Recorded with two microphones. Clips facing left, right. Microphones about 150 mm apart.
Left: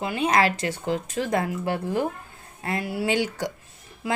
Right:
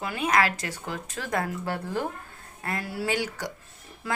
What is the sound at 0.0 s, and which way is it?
Speech, 25° left (ahead or behind).